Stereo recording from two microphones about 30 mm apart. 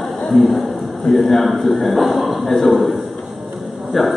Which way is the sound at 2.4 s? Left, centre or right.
Centre.